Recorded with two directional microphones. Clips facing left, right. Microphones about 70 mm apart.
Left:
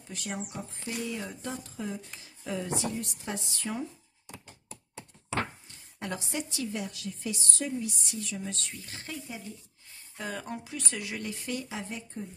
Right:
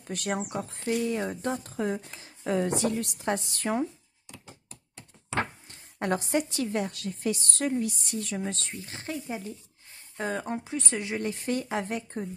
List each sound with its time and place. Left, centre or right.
0.0 s a woman's voice: right
2.0 s a woman's voice: right
3.3 s a woman's voice: right
5.7 s a woman's voice: right